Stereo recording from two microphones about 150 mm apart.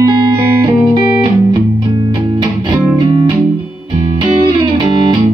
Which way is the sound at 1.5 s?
30° right (ahead or behind).